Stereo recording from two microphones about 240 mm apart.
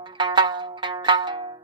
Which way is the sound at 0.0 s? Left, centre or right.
Centre.